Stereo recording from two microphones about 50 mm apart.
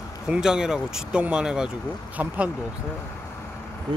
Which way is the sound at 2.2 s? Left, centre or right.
Right.